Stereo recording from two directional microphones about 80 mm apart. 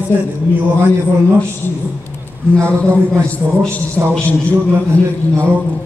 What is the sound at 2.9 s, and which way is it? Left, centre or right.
A man's voice, centre.